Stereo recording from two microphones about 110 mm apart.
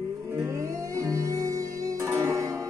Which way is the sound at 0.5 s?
25° right (ahead or behind).